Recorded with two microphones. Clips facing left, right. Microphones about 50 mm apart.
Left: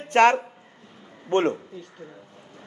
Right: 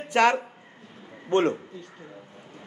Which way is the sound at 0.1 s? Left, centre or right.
Left.